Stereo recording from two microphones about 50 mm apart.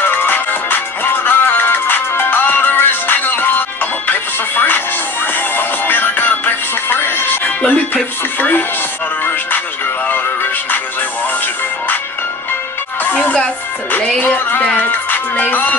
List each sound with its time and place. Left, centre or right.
0.0 s music: left
7.4 s speech: left
10.0 s music: left
13.0 s music: left